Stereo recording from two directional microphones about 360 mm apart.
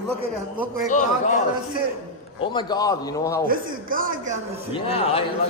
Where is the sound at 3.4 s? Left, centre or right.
Right.